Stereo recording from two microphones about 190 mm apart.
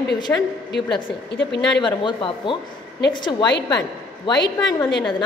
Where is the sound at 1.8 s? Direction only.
25° left (ahead or behind).